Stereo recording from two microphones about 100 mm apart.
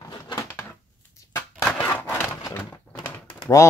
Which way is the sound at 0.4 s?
25° left (ahead or behind).